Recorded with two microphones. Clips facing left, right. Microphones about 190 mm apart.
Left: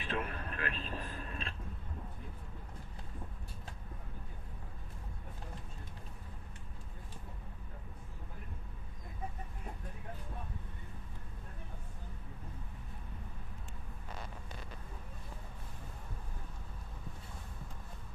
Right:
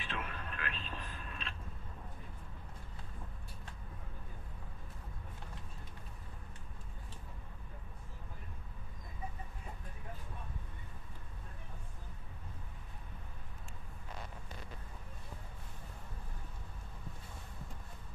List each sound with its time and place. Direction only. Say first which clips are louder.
0.1 s vehicle: left 6 dB; 40° left (ahead or behind)